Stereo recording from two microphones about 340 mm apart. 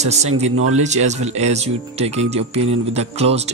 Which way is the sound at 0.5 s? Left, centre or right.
Right.